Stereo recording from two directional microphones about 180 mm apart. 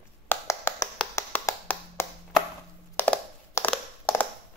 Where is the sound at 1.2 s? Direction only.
15° left (ahead or behind).